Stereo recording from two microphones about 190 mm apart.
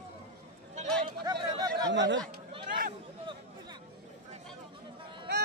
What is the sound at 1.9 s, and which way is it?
Speech, 70° right (ahead or behind).